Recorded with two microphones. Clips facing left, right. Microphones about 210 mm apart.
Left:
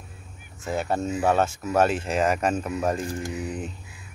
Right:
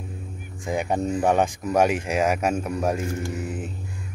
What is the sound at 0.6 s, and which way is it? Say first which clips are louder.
Speech: right 2 dB; 15° right (ahead or behind).